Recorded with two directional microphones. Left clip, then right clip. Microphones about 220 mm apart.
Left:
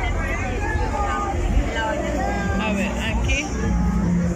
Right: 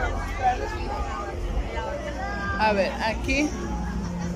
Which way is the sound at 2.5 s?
20° right (ahead or behind).